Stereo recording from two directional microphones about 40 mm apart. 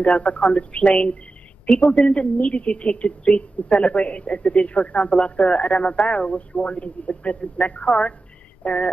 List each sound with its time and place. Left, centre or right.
0.0 s speech: left